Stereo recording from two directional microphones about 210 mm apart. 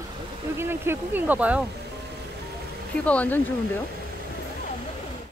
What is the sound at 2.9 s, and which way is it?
Speech, 5° left (ahead or behind).